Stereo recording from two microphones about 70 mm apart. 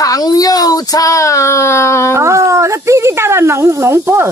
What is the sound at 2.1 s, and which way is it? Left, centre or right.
Speech, right.